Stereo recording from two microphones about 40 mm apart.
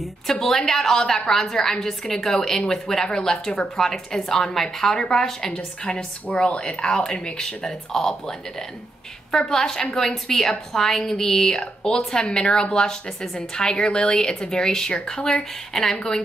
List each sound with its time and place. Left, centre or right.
0.0 s a woman's voice: centre
11.5 s a woman's voice: centre
15.7 s speech: centre